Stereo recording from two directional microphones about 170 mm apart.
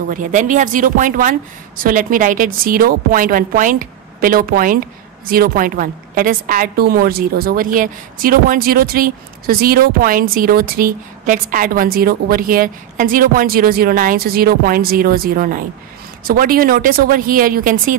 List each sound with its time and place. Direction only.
0.1 s a woman's voice: 50° right (ahead or behind)